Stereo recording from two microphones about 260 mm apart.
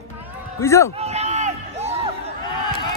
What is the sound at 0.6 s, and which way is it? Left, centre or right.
Speech, centre.